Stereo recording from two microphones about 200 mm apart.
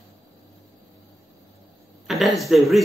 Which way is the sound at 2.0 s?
Centre (ahead or behind).